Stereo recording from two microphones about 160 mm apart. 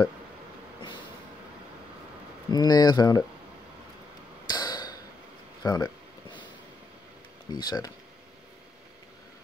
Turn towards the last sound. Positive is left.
turn(degrees=25)  # may be behind; listen again after turning